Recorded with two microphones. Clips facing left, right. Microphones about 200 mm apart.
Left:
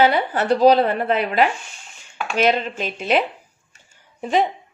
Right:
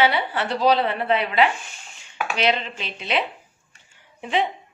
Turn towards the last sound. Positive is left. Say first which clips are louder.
# left 4 dB
turn(degrees=40)  # may be behind; listen again after turning